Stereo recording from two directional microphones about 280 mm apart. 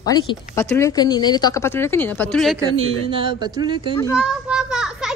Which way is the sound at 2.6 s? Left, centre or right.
Right.